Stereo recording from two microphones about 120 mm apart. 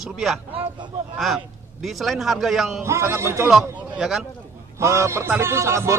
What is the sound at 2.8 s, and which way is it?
Speech, 20° right (ahead or behind).